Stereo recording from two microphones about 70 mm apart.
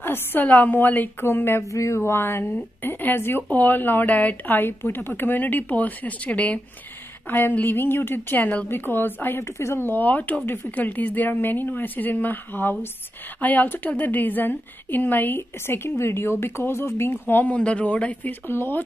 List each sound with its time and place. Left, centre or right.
0.0 s a woman's voice: left
1.7 s a sound: left
2.0 s a woman's voice: left
9.4 s a woman's voice: left
17.5 s a woman's voice: centre
18.5 s speech: left